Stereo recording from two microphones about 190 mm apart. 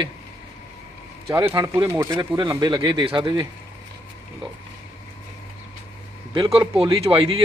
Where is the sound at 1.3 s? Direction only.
15° right (ahead or behind).